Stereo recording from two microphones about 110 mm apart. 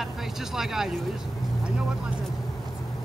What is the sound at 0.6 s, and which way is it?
Speech, 5° right (ahead or behind).